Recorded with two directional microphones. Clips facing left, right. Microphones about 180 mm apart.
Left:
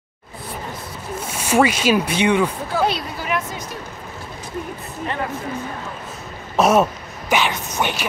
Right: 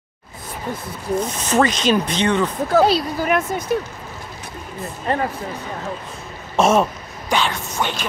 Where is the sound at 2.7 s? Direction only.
40° right (ahead or behind).